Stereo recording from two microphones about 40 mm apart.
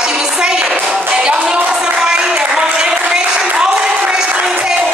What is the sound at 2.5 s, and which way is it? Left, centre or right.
Applause, centre.